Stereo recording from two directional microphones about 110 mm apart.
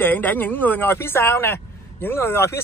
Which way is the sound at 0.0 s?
15° left (ahead or behind).